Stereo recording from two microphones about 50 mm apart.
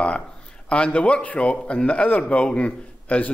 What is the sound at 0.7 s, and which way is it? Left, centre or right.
A man's voice, left.